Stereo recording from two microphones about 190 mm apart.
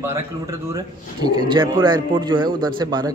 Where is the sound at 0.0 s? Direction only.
15° right (ahead or behind).